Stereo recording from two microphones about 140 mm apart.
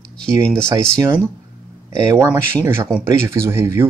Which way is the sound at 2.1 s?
25° right (ahead or behind).